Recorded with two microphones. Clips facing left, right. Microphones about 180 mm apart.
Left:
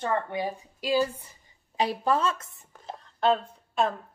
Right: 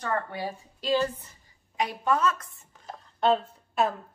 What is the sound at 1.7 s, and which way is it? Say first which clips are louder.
A woman's voice: left 1 dB; 30° left (ahead or behind).